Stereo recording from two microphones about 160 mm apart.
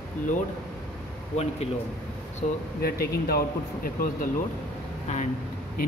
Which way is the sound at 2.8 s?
75° left (ahead or behind).